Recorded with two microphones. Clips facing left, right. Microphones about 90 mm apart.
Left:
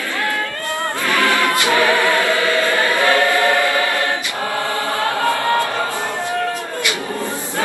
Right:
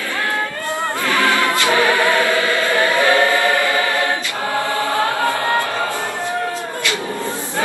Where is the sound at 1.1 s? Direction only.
25° right (ahead or behind).